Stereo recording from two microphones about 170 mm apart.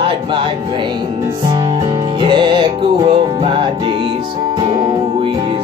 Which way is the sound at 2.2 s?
30° right (ahead or behind).